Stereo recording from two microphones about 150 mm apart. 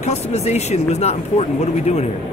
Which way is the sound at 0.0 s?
45° left (ahead or behind).